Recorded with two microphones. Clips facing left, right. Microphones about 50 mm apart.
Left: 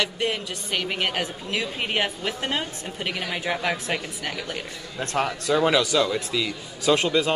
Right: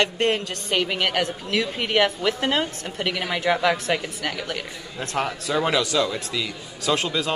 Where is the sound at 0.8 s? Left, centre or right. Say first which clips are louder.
Right 3 dB; right.